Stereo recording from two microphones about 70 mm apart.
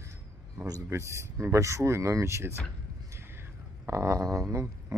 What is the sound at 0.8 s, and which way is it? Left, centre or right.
Speech, right.